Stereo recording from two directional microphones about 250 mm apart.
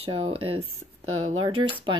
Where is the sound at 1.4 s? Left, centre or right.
Centre.